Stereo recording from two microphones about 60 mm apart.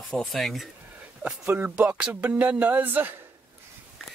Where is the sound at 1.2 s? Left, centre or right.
Right.